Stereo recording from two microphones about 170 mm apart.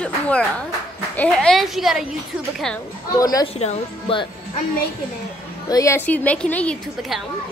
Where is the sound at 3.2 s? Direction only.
20° left (ahead or behind).